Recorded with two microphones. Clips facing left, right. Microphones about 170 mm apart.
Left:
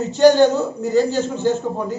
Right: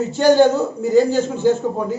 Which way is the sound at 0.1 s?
10° right (ahead or behind).